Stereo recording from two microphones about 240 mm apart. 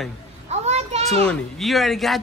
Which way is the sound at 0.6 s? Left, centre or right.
Right.